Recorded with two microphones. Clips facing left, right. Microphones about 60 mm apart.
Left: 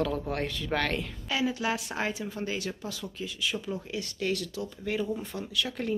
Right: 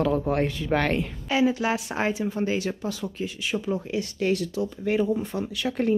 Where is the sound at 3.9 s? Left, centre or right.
Right.